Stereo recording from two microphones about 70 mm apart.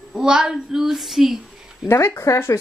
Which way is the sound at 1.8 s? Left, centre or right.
Left.